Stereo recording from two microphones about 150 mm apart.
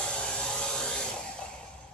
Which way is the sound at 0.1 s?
5° left (ahead or behind).